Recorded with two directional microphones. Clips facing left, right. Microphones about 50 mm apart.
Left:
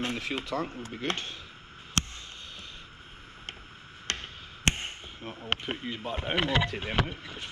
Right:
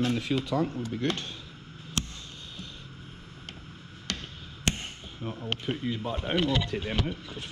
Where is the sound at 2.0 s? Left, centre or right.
Left.